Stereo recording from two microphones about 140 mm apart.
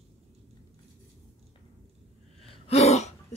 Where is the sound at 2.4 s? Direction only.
50° left (ahead or behind).